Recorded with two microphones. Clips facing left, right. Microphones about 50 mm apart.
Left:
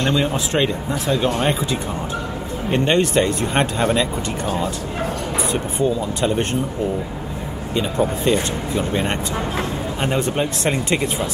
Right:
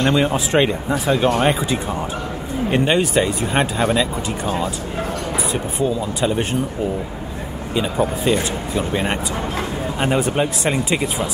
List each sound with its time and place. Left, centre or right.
0.0 s speech: centre
5.5 s speech: centre
7.7 s speech: centre
9.9 s speech: centre